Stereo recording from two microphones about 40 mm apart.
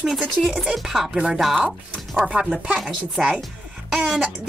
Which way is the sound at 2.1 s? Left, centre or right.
Right.